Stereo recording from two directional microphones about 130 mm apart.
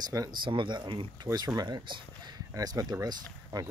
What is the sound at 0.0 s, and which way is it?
Speech, 30° right (ahead or behind).